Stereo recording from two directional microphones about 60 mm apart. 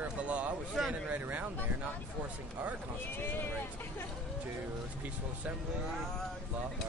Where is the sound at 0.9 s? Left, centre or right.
Right.